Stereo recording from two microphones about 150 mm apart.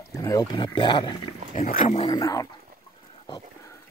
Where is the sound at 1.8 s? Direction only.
45° left (ahead or behind).